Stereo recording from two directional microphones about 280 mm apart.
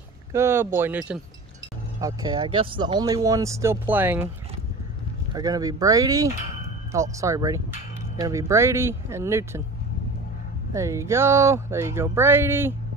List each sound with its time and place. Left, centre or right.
0.3 s speech: centre
5.3 s speech: centre
10.7 s speech: centre